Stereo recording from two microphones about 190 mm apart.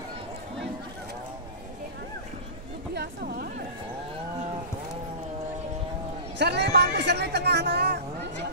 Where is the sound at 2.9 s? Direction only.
55° right (ahead or behind).